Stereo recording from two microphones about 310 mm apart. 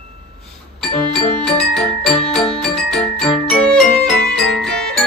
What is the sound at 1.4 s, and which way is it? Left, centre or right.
Music, centre.